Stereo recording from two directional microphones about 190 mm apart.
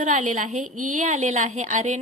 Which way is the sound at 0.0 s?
40° right (ahead or behind).